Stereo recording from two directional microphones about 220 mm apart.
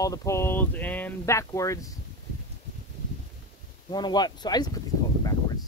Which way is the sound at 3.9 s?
20° left (ahead or behind).